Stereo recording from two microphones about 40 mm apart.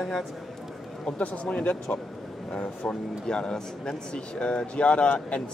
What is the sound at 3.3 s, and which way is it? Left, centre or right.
Speech, centre.